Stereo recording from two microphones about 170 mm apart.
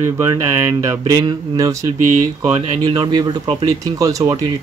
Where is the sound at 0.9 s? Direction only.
25° right (ahead or behind).